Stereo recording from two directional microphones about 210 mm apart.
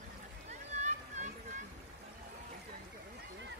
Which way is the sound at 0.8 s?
35° right (ahead or behind).